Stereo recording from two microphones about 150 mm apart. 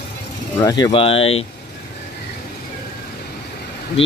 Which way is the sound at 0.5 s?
25° left (ahead or behind).